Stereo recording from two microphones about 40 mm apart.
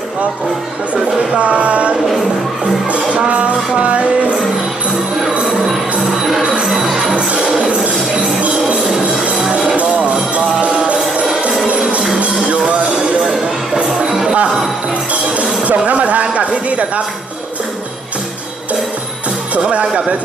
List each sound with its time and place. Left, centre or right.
1.3 s music: right
3.3 s music: right
6.7 s music: centre
8.7 s music: centre
9.8 s music: right
12.9 s music: centre
15.6 s speech: right
19.5 s speech: right